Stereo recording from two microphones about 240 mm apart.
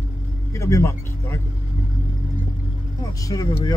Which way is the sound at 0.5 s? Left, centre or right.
Centre.